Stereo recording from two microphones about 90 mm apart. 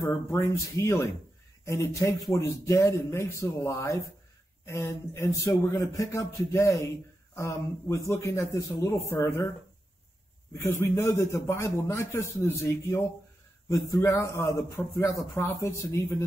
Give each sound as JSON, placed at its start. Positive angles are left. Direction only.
{"t": 0.0, "sound": "a man's voice", "side_deg": 30}
{"t": 10.5, "sound": "a man's voice", "side_deg": 30}
{"t": 14.0, "sound": "a man's voice", "side_deg": 30}